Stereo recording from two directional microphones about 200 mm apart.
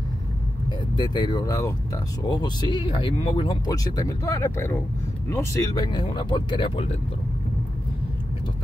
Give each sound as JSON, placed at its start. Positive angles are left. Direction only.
{"t": 0.7, "sound": "speech", "side_deg": 20}